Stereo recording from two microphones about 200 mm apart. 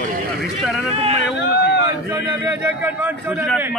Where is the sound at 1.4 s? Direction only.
55° left (ahead or behind).